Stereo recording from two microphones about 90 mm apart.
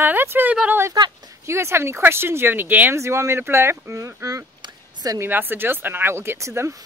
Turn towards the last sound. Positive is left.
turn(degrees=-30)  # may be behind; listen again after turning